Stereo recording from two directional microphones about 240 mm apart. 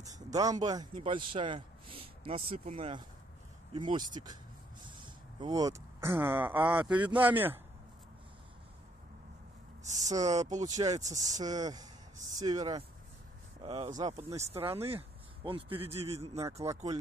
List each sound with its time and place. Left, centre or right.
0.0 s a man's voice: centre
9.9 s a man's voice: centre
16.3 s speech: centre